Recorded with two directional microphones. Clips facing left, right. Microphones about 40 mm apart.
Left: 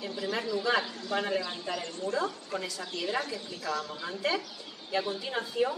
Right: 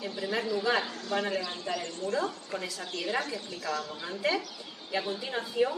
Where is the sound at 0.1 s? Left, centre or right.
Centre.